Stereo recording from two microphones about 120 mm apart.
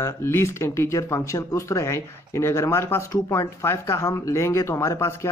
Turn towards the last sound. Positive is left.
turn(degrees=20)  # may be behind; listen again after turning